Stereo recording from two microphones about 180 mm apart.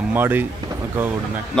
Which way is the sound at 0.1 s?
10° right (ahead or behind).